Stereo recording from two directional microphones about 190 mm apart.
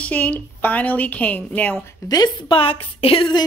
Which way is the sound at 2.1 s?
25° left (ahead or behind).